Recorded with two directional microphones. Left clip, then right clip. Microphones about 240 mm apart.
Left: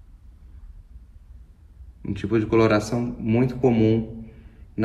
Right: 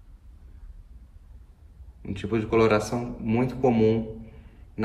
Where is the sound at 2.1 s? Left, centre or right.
Left.